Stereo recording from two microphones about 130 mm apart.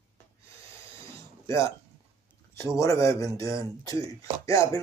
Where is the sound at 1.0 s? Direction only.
25° left (ahead or behind).